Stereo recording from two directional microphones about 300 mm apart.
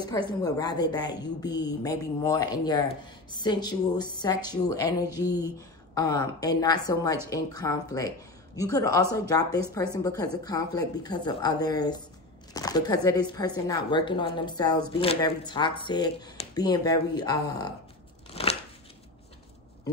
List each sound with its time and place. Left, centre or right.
0.3 s a woman's voice: centre
18.4 s scissors: centre